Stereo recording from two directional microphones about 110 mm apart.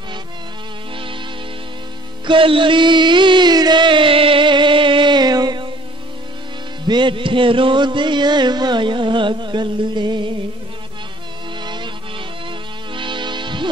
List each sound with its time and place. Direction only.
0.9 s music: 50° right (ahead or behind)
2.2 s music: 50° right (ahead or behind)
6.8 s music: 45° right (ahead or behind)
11.6 s music: 45° right (ahead or behind)